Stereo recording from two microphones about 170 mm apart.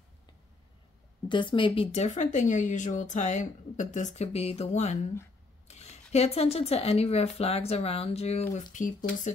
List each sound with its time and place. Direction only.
1.3 s speech: 30° left (ahead or behind)
8.7 s speech: 50° left (ahead or behind)